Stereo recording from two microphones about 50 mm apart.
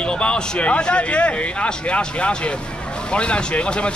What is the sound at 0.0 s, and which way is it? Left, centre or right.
Speech, left.